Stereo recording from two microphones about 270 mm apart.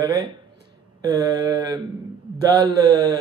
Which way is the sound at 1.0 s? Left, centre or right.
Centre.